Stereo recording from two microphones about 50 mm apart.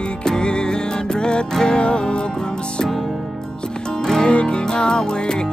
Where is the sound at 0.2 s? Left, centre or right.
Centre.